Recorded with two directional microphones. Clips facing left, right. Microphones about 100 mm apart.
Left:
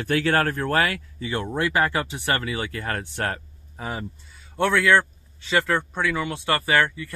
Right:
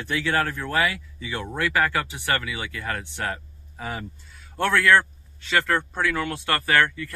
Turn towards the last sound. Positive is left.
turn(degrees=15)  # may be behind; listen again after turning